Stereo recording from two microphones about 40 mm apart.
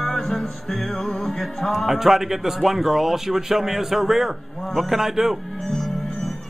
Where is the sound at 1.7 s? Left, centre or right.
Centre.